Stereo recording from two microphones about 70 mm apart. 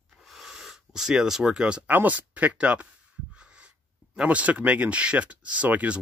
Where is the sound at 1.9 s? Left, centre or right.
Right.